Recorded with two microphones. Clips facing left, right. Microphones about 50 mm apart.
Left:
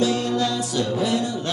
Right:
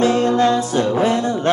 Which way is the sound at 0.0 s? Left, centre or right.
Right.